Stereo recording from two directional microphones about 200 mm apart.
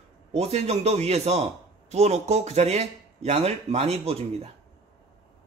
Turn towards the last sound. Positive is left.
turn(degrees=-30)  # may be behind; listen again after turning